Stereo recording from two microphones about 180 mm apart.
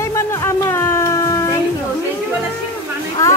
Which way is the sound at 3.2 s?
15° left (ahead or behind).